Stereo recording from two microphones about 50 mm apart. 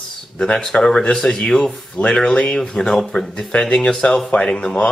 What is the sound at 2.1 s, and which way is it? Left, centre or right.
Speech, left.